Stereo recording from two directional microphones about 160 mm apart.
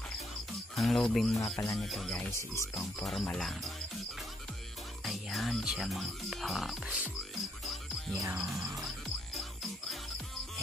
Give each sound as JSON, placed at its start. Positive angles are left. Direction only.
{"t": 0.7, "sound": "speech", "side_deg": 0}
{"t": 2.5, "sound": "speech", "side_deg": 20}
{"t": 3.0, "sound": "speech", "side_deg": 0}
{"t": 5.0, "sound": "speech", "side_deg": 0}
{"t": 7.6, "sound": "music", "side_deg": 0}
{"t": 8.2, "sound": "music", "side_deg": -15}